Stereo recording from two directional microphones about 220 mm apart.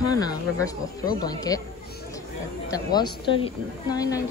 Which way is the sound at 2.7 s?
20° left (ahead or behind).